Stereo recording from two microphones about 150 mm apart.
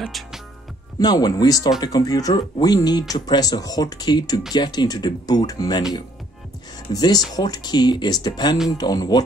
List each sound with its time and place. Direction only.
0.0 s music: 5° right (ahead or behind)
0.9 s speech: 25° left (ahead or behind)
6.9 s speech: 25° left (ahead or behind)